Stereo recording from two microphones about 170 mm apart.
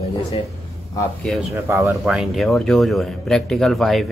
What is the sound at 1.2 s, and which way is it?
Speech, centre (ahead or behind).